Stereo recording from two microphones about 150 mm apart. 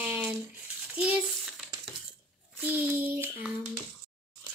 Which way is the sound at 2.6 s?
10° right (ahead or behind).